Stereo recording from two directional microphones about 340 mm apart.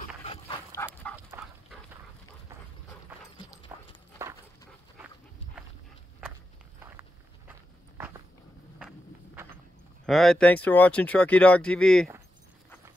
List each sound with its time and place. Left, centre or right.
0.2 s dog: centre
1.0 s dog: centre
8.7 s vehicle: centre
10.0 s speech: centre